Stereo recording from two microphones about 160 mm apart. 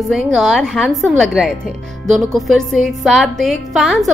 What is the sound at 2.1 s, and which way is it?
A woman's voice, centre (ahead or behind).